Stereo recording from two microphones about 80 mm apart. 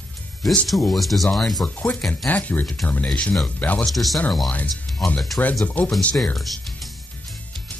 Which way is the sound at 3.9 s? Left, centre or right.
Centre.